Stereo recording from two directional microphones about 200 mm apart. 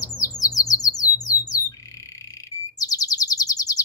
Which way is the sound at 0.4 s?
15° left (ahead or behind).